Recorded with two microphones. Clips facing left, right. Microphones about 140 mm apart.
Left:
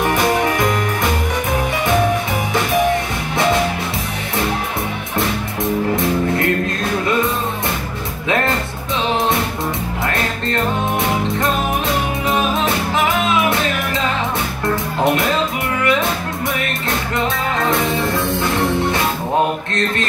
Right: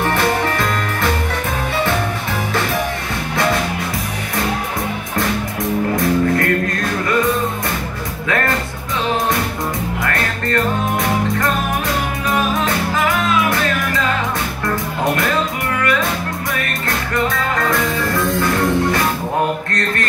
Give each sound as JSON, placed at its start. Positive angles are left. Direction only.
{"t": 0.0, "sound": "music", "side_deg": 15}
{"t": 5.9, "sound": "music", "side_deg": 25}
{"t": 12.3, "sound": "music", "side_deg": 25}
{"t": 15.8, "sound": "music", "side_deg": 20}
{"t": 17.1, "sound": "music", "side_deg": 25}